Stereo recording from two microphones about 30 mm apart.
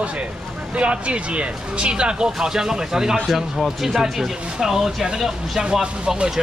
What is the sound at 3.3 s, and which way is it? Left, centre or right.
Speech, centre.